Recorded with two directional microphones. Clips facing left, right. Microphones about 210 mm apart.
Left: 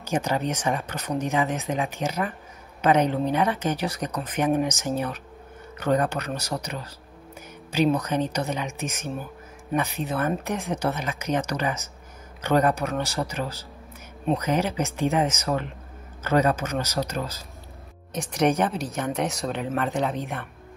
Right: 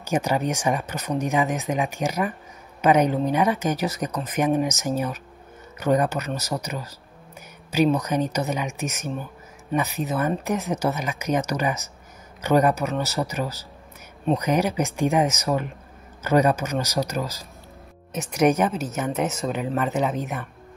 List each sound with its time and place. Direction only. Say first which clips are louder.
0.0 s speech: right 2 dB; 10° right (ahead or behind)
9.1 s a sound: right 1 dB; 5° left (ahead or behind)
9.9 s speech: right 2 dB; 5° right (ahead or behind)